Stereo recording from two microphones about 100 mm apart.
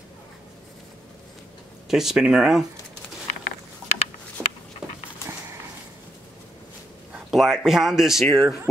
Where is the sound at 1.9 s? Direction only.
5° right (ahead or behind).